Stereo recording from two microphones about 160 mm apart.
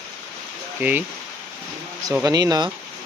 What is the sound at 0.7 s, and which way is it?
Speech, 10° right (ahead or behind).